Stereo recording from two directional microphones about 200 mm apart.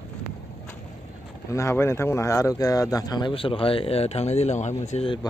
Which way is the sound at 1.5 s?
15° left (ahead or behind).